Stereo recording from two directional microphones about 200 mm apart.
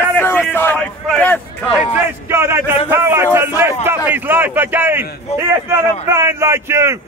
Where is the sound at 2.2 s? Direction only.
10° right (ahead or behind).